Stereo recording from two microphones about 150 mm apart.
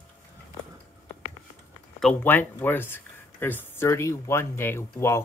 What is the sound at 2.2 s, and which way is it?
Speech, 15° left (ahead or behind).